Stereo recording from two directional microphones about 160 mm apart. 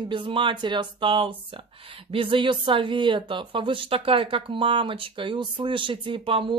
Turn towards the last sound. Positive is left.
turn(degrees=-35)  # may be behind; listen again after turning